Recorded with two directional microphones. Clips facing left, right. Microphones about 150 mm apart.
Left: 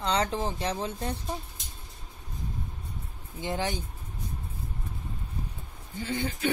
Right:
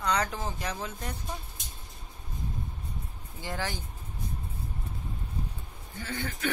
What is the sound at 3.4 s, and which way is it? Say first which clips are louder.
Speech: left 4 dB; 20° left (ahead or behind).